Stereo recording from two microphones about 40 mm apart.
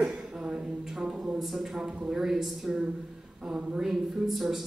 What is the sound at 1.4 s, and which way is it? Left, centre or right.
Speech, centre.